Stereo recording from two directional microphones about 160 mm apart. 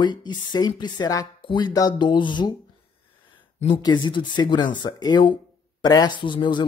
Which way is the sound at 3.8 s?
30° left (ahead or behind).